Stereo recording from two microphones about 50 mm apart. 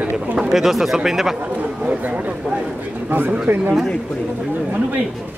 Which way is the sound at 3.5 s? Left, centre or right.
Right.